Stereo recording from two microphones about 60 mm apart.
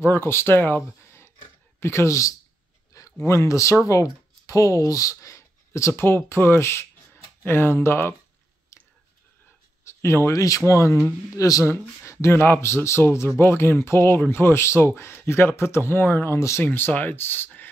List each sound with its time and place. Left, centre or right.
0.0 s speech: left
2.9 s a sound: left
3.3 s speech: left
6.0 s speech: left
8.7 s whispering: left
9.8 s a sound: left
10.3 s speech: left
11.3 s speech: left
11.6 s speech: left
16.3 s speech: left
16.6 s speech: left